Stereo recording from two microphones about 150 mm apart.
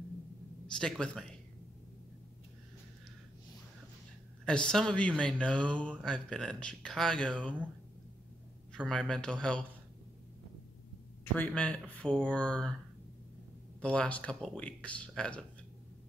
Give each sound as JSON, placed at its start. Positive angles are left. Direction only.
{"t": 0.7, "sound": "speech", "side_deg": 5}
{"t": 4.5, "sound": "speech", "side_deg": 5}
{"t": 8.7, "sound": "speech", "side_deg": 5}
{"t": 11.3, "sound": "speech", "side_deg": 5}
{"t": 13.7, "sound": "speech", "side_deg": 10}